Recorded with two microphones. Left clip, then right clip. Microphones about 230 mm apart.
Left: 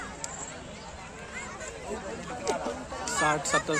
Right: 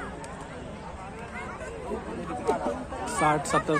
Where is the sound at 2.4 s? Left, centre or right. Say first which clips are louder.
Right 3 dB; left.